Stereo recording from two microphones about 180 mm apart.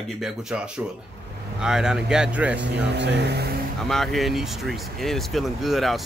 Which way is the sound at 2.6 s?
75° right (ahead or behind).